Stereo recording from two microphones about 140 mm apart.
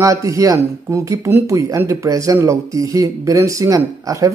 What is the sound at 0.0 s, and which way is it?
Speech, 20° right (ahead or behind).